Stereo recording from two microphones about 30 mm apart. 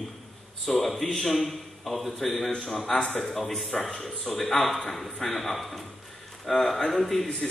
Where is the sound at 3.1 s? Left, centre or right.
Left.